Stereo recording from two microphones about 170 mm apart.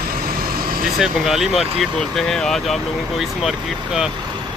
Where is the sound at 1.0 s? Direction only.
Centre (ahead or behind).